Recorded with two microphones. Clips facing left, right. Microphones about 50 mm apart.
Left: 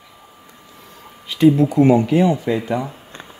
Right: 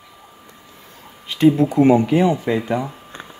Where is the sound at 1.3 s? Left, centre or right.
Right.